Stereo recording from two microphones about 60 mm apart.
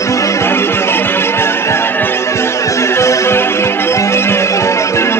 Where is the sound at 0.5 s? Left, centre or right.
Left.